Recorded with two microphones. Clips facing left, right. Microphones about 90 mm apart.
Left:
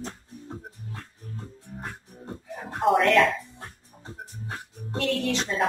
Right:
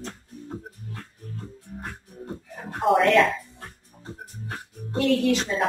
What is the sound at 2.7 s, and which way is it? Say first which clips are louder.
Speech: right 1 dB; centre (ahead or behind).